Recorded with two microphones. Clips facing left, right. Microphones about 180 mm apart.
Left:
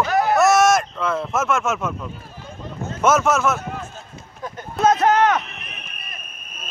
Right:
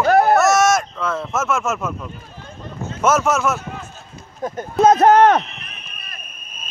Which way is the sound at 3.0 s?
5° right (ahead or behind).